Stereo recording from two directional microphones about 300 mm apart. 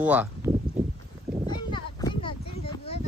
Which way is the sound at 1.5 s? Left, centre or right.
Centre.